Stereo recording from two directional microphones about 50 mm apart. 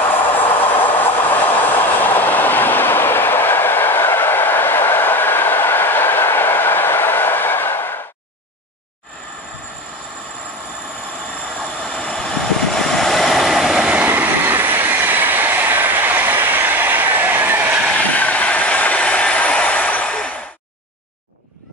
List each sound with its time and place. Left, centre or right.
0.4 s train: left
11.6 s vehicle: centre
13.9 s train: right
17.9 s train: left